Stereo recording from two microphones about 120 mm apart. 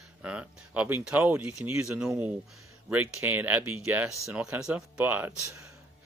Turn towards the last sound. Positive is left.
turn(degrees=-15)  # may be behind; listen again after turning